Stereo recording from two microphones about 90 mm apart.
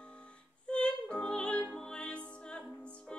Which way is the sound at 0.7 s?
10° left (ahead or behind).